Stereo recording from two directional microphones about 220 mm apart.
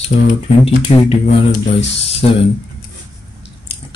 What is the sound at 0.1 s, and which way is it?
Speech, 40° left (ahead or behind).